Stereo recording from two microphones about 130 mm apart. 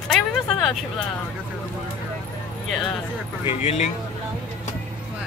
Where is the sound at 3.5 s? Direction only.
55° left (ahead or behind).